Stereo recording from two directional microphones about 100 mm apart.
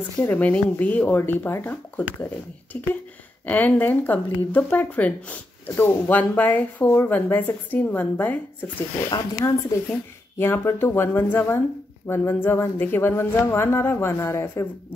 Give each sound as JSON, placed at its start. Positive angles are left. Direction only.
{"t": 0.2, "sound": "speech", "side_deg": 20}
{"t": 9.1, "sound": "speech", "side_deg": 40}
{"t": 9.8, "sound": "speech", "side_deg": 20}